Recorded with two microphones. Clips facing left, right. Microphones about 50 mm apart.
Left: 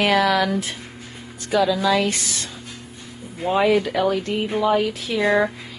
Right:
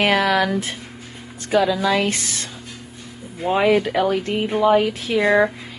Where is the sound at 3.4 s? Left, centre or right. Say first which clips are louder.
Right 1 dB; centre.